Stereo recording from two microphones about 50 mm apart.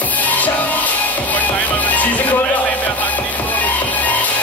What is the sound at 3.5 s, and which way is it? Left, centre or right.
Music, left.